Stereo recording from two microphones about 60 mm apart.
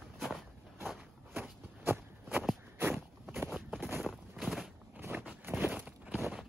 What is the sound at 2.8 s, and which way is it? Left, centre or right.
Walk, right.